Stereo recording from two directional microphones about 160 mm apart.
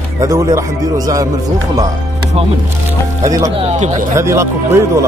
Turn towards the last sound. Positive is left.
turn(degrees=-15)  # may be behind; listen again after turning